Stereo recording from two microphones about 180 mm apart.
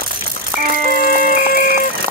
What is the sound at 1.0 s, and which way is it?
Chicken, 55° left (ahead or behind).